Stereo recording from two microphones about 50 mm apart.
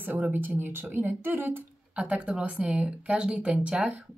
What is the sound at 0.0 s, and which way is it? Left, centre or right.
Speech, right.